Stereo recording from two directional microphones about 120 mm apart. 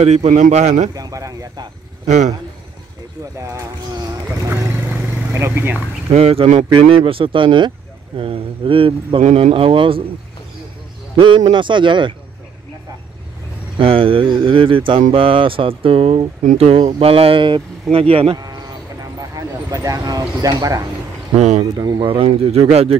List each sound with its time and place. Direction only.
0.0 s speech: 60° right (ahead or behind)
0.9 s speech: 30° right (ahead or behind)
2.0 s a man's voice: 75° right (ahead or behind)
3.3 s speech: 25° right (ahead or behind)
6.1 s speech: 55° right (ahead or behind)
11.1 s speech: 40° right (ahead or behind)
13.7 s speech: 45° right (ahead or behind)
19.3 s speech: 30° right (ahead or behind)
21.4 s a man's voice: 70° right (ahead or behind)
21.7 s speech: 35° right (ahead or behind); by 22.9 s 60° right (ahead or behind)